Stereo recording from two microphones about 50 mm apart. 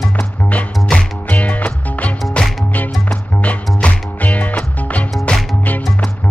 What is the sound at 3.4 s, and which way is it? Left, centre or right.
Music, left.